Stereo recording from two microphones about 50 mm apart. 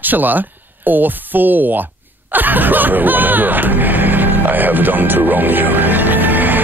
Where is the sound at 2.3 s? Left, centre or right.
Right.